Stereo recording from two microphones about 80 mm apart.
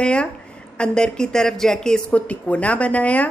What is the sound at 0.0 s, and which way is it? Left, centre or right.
A woman's voice, centre.